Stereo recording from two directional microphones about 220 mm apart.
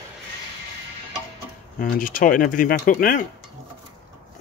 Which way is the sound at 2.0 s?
40° left (ahead or behind).